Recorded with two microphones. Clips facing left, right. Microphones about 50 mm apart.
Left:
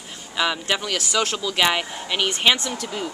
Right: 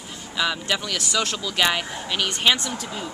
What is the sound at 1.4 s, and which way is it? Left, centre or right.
Speech, centre.